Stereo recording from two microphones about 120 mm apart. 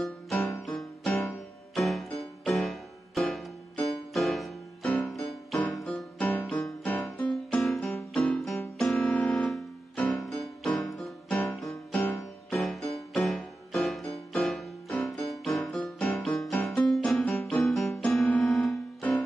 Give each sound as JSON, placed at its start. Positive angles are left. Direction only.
{"t": 0.0, "sound": "music", "side_deg": 0}
{"t": 7.9, "sound": "keyboard", "side_deg": 10}
{"t": 11.6, "sound": "music", "side_deg": 0}
{"t": 12.0, "sound": "music", "side_deg": 15}
{"t": 12.5, "sound": "music", "side_deg": 0}